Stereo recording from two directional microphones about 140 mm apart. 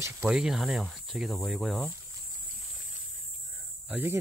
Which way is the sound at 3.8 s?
15° right (ahead or behind).